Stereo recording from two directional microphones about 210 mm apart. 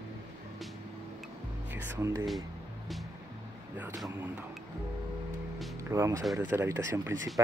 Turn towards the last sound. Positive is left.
turn(degrees=-10)  # may be behind; listen again after turning